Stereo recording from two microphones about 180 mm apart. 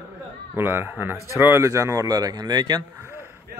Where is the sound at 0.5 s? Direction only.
10° right (ahead or behind).